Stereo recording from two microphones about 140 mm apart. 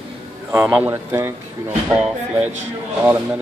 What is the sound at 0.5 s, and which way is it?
A man's voice, 15° right (ahead or behind).